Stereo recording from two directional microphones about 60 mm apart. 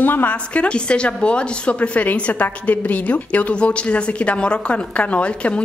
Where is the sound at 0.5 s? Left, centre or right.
Centre.